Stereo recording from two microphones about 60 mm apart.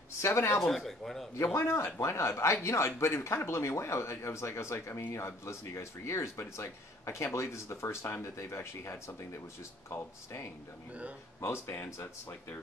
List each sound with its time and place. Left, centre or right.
0.2 s speech: left
0.6 s speech: centre
1.3 s speech: left
10.9 s speech: right
11.4 s speech: left
12.0 s speech: left